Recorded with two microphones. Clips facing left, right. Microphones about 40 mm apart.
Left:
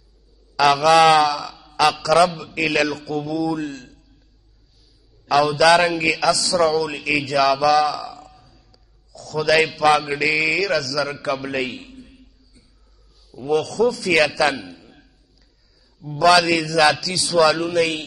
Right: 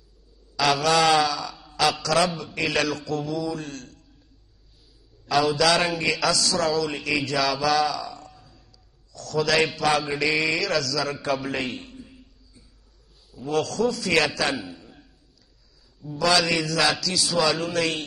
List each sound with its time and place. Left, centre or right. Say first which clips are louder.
0.6 s a man's voice: left 7 dB; centre
5.2 s a man's voice: left 5 dB; centre
7.3 s a man's voice: left 7 dB; centre
12.0 s a sound: left 1 dB; centre
13.5 s a man's voice: left 5 dB; centre
14.7 s a sound: even; centre
16.0 s a man's voice: left 7 dB; left
16.9 s a man's voice: left 4 dB; centre